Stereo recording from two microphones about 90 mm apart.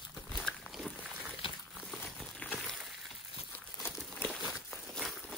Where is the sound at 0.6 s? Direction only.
5° right (ahead or behind).